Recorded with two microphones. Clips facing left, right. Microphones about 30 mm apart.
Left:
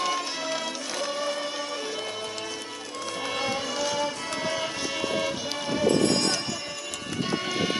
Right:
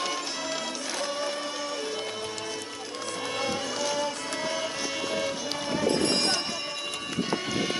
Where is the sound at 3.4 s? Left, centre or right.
Centre.